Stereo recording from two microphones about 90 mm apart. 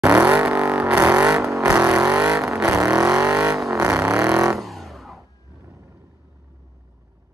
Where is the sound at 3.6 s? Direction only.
35° right (ahead or behind).